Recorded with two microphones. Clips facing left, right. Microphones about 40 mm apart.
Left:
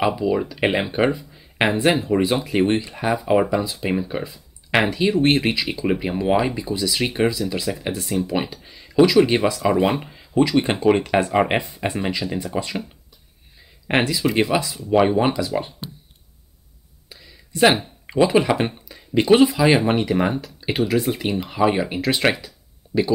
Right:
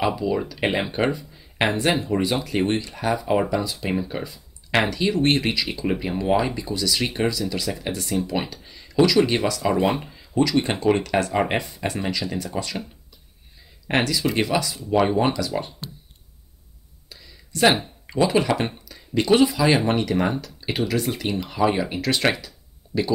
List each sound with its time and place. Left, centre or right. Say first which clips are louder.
0.0 s speech: left 3 dB; centre
8.3 s speech: left 3 dB; centre
13.8 s speech: left 2 dB; centre
17.1 s a sound: left 2 dB; centre
18.0 s speech: left 3 dB; centre
22.8 s a sound: left 4 dB; centre